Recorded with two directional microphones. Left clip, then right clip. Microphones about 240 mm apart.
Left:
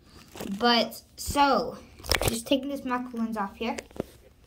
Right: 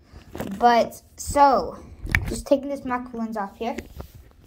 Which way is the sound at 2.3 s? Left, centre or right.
Centre.